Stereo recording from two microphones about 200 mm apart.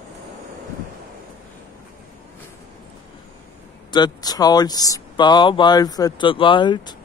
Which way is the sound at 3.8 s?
20° left (ahead or behind).